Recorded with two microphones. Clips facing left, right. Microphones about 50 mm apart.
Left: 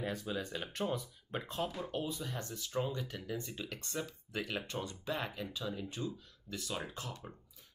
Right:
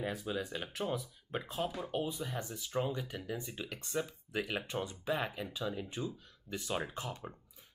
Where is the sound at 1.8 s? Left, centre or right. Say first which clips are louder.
Right 2 dB; centre.